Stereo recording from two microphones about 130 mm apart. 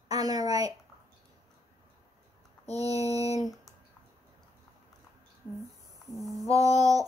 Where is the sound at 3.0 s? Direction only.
55° left (ahead or behind).